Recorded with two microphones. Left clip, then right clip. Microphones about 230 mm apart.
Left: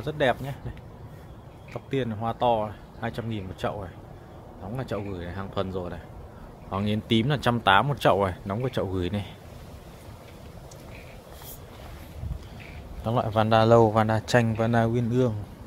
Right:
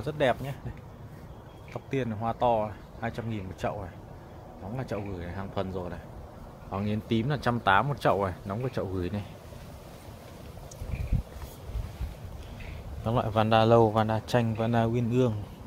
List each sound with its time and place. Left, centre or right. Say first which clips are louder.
0.0 s a man's voice: left 2 dB; centre
1.7 s a man's voice: left 3 dB; centre
4.7 s a man's voice: left 3 dB; centre
6.7 s speech: left 5 dB; centre
13.0 s a man's voice: left 2 dB; centre